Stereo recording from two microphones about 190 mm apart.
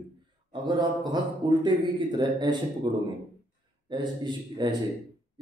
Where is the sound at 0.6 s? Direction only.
20° right (ahead or behind).